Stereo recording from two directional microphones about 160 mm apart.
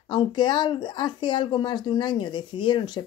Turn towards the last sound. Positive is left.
turn(degrees=30)  # may be behind; listen again after turning